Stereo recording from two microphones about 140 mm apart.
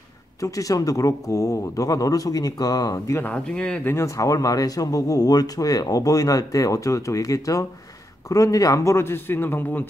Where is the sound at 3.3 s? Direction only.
5° left (ahead or behind).